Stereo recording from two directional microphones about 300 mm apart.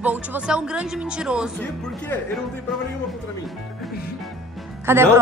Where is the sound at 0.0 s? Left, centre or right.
Centre.